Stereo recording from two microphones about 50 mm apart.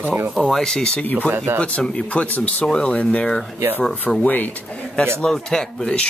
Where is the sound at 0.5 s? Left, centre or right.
Centre.